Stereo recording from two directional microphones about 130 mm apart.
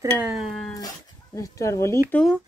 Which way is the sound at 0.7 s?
25° left (ahead or behind).